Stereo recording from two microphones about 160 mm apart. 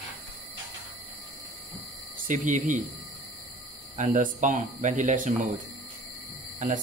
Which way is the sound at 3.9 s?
50° right (ahead or behind).